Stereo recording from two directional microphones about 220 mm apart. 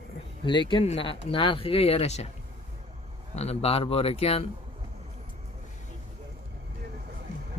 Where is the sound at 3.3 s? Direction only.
30° left (ahead or behind).